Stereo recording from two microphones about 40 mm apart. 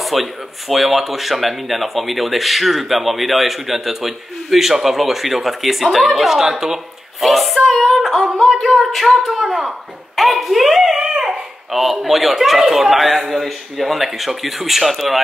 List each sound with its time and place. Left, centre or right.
0.0 s speech: centre
7.2 s speech: centre
11.0 s dog: centre
11.7 s speech: centre